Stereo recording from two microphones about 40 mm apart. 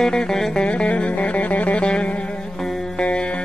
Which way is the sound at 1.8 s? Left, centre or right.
Left.